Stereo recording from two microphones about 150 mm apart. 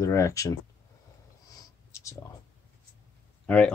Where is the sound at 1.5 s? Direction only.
20° left (ahead or behind).